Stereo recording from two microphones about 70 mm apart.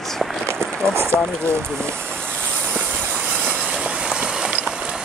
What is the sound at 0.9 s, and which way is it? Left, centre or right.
Speech, right.